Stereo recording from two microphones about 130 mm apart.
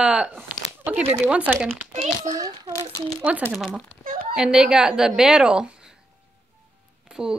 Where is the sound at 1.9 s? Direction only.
60° right (ahead or behind).